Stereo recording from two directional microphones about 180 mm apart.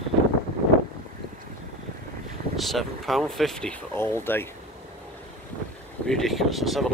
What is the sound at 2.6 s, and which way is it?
Speech, centre (ahead or behind).